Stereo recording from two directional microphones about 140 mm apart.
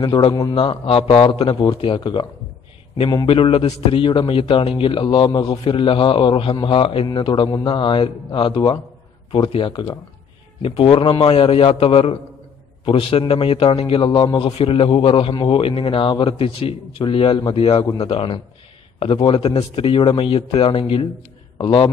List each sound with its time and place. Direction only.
0.0 s a man's voice: 35° left (ahead or behind)
3.3 s a man's voice: 40° left (ahead or behind)